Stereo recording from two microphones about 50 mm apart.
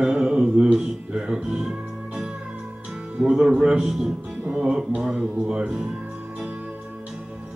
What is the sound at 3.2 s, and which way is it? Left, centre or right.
Speech, right.